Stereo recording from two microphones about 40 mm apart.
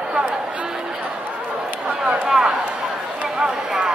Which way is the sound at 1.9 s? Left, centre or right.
Right.